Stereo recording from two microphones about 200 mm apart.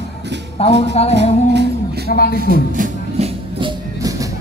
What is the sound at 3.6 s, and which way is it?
Music, 15° right (ahead or behind).